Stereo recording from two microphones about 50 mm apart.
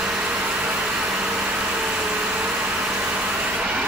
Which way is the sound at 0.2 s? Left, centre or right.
Right.